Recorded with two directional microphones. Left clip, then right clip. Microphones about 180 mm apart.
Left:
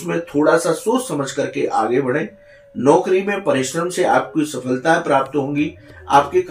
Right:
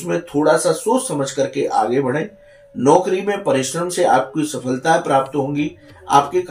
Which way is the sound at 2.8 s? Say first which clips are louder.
Even; 35° right (ahead or behind).